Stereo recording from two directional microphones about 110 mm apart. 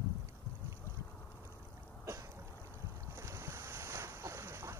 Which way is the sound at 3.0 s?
25° right (ahead or behind).